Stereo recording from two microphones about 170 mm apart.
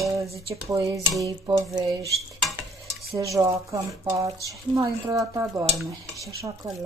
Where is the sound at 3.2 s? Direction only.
20° right (ahead or behind).